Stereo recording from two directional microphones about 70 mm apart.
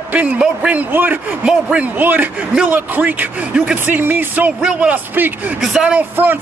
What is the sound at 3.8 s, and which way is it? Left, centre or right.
Speech, right.